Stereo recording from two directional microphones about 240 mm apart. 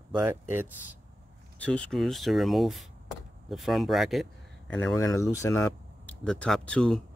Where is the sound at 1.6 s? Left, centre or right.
Centre.